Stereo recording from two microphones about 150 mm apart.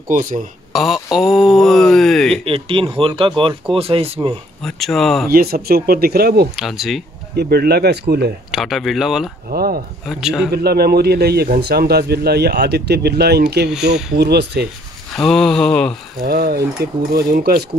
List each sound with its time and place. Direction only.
0.7 s speech: centre (ahead or behind)
2.4 s speech: 35° right (ahead or behind)
4.6 s speech: centre (ahead or behind)
5.3 s a man's voice: 85° right
6.5 s speech: centre (ahead or behind)
7.3 s a man's voice: 90° right
8.5 s speech: centre (ahead or behind)
9.5 s speech: 80° right
10.0 s speech: centre (ahead or behind)
10.5 s a man's voice: 90° right
15.1 s speech: 5° left (ahead or behind)
16.3 s speech: 85° right
17.1 s speech: 75° right (ahead or behind)